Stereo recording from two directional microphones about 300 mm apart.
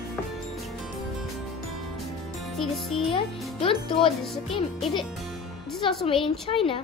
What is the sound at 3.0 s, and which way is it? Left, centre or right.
Speech, centre.